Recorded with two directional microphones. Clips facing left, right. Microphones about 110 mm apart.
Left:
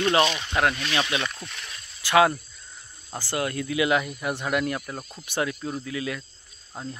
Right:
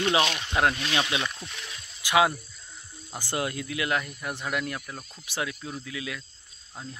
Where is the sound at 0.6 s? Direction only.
20° right (ahead or behind).